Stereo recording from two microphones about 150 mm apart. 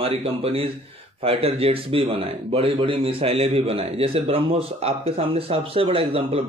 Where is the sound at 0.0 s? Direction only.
40° right (ahead or behind).